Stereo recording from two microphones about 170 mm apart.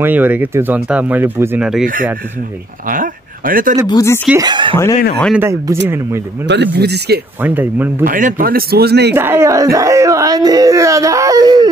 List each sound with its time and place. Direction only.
0.0 s speech: 10° right (ahead or behind)
2.9 s speech: 55° right (ahead or behind)
3.8 s speech: 20° left (ahead or behind)
4.4 s speech: 25° right (ahead or behind)
5.3 s speech: 15° right (ahead or behind)
6.4 s speech: 90° right; by 7.2 s 75° right (ahead or behind)
7.4 s speech: 10° right (ahead or behind)
8.0 s speech: 50° right (ahead or behind); by 9.1 s 75° right (ahead or behind)
9.1 s speech: 15° right (ahead or behind)